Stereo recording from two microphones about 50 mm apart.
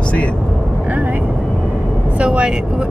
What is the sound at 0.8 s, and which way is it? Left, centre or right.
Vehicle, right.